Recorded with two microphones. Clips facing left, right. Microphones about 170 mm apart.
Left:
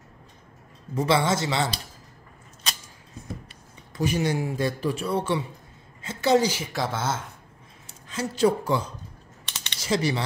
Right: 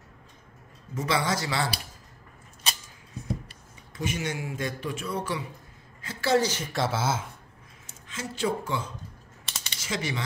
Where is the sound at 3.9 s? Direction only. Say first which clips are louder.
Left 6 dB; 35° left (ahead or behind); by 7.3 s 10° right (ahead or behind).